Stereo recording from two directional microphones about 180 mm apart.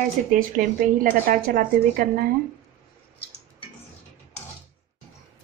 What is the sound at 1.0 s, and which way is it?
A woman's voice, 50° right (ahead or behind).